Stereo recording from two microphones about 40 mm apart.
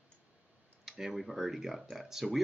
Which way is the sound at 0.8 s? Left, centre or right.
Centre.